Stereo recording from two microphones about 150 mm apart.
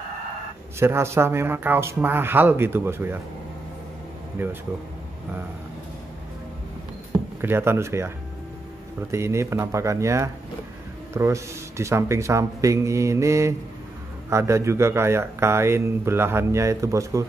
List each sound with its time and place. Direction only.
0.7 s speech: 15° right (ahead or behind)
4.4 s speech: 15° right (ahead or behind)
7.4 s speech: 15° right (ahead or behind)
9.1 s speech: 20° right (ahead or behind)